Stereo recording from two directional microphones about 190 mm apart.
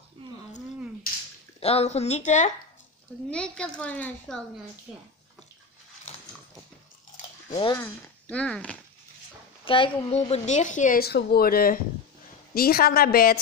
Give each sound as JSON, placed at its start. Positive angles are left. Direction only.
{"t": 1.6, "sound": "speech", "side_deg": 30}
{"t": 3.3, "sound": "a woman's voice", "side_deg": 5}
{"t": 7.4, "sound": "speech", "side_deg": 25}
{"t": 7.7, "sound": "speech", "side_deg": 10}
{"t": 9.7, "sound": "speech", "side_deg": 30}